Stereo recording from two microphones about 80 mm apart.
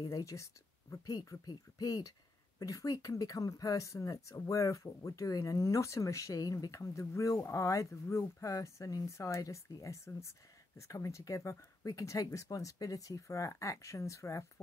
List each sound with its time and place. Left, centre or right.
0.0 s speech: left